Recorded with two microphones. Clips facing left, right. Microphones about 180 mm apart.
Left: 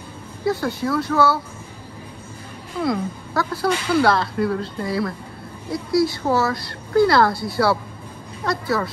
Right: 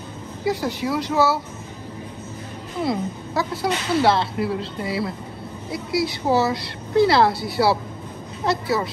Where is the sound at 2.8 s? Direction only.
25° right (ahead or behind).